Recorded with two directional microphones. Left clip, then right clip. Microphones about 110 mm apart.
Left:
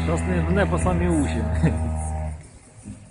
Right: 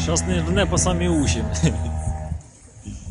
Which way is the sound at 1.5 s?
35° right (ahead or behind).